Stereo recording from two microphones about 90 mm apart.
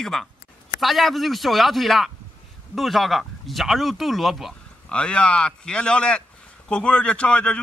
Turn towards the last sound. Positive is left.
turn(degrees=10)  # may be behind; listen again after turning